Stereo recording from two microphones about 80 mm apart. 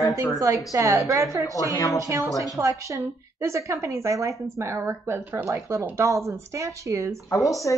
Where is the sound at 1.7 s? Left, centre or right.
Left.